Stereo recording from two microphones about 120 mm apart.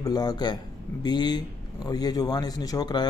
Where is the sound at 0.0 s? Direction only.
35° left (ahead or behind).